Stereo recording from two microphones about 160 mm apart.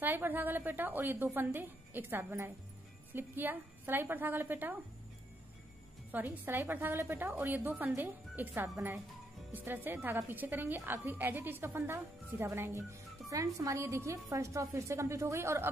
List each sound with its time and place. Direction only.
0.0 s a woman's voice: 10° right (ahead or behind)
6.1 s a woman's voice: 10° right (ahead or behind)